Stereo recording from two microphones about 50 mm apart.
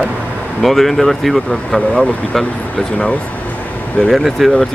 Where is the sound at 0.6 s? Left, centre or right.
Centre.